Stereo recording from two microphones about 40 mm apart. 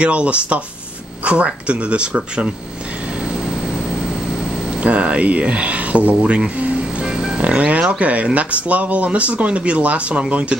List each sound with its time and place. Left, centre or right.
0.0 s speech: right
4.7 s speech: right
7.0 s music: centre
7.4 s speech: right